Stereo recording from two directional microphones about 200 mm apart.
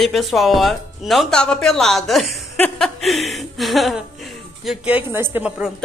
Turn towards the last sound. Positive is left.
turn(degrees=-5)  # may be behind; listen again after turning